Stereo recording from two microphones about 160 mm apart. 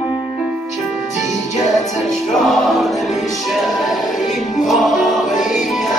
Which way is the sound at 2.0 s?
Centre (ahead or behind).